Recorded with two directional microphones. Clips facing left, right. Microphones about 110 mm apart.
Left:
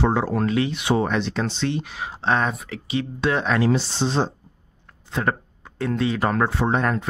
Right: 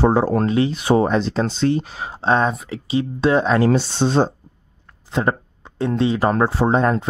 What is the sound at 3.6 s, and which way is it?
Speech, 55° right (ahead or behind).